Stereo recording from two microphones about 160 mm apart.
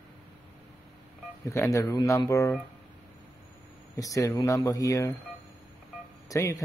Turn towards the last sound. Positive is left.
turn(degrees=20)  # may be behind; listen again after turning